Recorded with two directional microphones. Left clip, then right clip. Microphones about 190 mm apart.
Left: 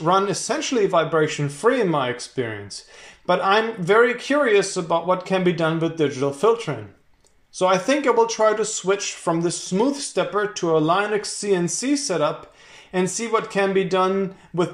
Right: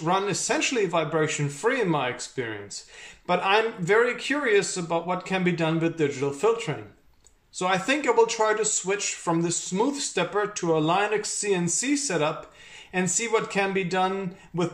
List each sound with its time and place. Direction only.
0.0 s speech: 15° right (ahead or behind)